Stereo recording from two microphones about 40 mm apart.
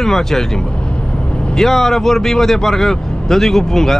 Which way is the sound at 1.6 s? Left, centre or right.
Centre.